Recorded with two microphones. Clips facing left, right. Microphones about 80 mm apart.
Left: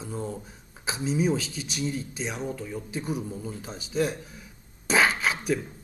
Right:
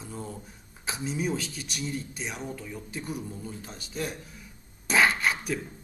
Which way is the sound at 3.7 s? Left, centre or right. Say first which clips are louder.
Left 8 dB; left.